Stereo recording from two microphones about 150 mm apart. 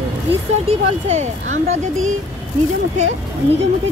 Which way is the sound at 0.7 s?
45° right (ahead or behind).